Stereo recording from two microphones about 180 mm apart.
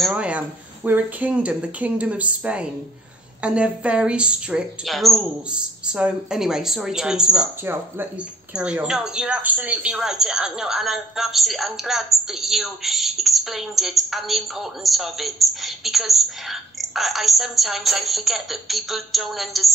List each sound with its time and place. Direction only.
0.0 s speech: 5° right (ahead or behind)